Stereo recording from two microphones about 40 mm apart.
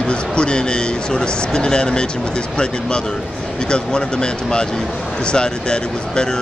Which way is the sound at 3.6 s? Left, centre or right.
Left.